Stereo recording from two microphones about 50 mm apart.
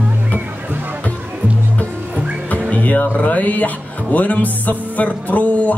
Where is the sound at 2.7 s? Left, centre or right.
Left.